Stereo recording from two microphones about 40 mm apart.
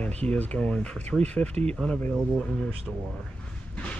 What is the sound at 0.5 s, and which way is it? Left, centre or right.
Speech, left.